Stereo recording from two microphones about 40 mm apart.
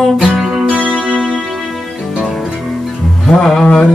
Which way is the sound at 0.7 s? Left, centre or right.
Right.